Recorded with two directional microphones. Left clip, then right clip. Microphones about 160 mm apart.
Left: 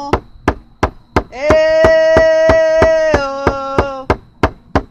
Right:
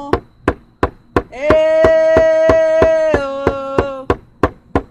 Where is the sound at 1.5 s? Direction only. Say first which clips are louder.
Left 1 dB; centre (ahead or behind).